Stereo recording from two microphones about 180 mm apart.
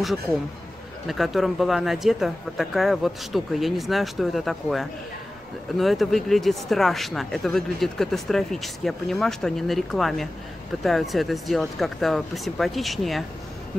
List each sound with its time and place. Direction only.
1.0 s speech: centre (ahead or behind)